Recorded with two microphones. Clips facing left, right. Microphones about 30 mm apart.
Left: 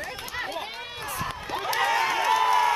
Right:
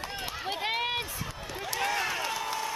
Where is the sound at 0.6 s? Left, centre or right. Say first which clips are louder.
Right 6 dB; right.